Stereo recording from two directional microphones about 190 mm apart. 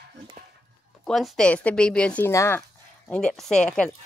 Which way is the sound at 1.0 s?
Centre (ahead or behind).